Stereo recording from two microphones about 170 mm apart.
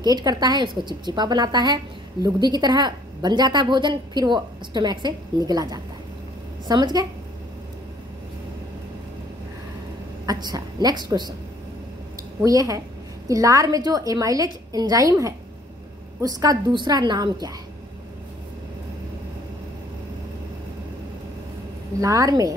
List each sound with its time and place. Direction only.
0.0 s a woman's voice: 25° right (ahead or behind)
10.2 s a woman's voice: 25° right (ahead or behind)
12.4 s a woman's voice: 20° right (ahead or behind)
22.0 s a woman's voice: 20° right (ahead or behind)